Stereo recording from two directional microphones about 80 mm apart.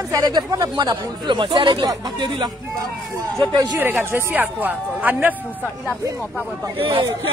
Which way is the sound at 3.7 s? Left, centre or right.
Right.